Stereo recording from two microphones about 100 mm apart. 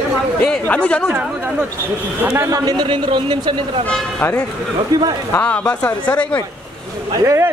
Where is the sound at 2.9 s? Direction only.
55° right (ahead or behind).